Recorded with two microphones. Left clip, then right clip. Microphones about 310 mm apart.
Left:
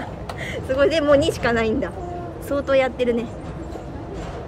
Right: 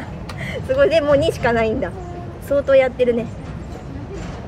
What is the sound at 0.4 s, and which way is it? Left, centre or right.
A woman's voice, centre.